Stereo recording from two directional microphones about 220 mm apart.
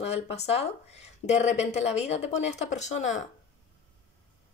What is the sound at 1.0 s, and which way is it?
Speech, 30° left (ahead or behind).